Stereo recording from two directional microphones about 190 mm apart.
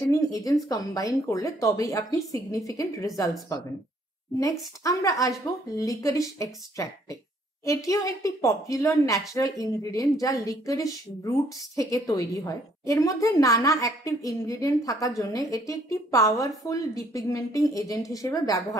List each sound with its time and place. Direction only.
0.0 s speech: 20° left (ahead or behind)